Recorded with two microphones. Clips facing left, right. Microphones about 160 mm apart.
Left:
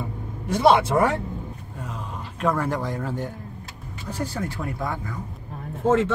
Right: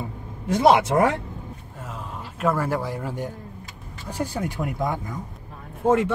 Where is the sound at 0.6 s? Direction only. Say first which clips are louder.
Right 1 dB; 20° right (ahead or behind).